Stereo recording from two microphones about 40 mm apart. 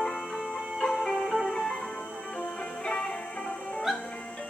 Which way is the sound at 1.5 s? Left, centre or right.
Centre.